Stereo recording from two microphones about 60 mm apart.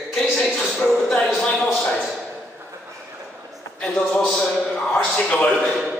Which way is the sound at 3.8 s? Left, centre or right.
Left.